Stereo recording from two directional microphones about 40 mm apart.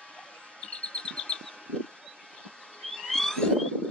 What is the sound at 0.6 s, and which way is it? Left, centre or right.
Chirp, left.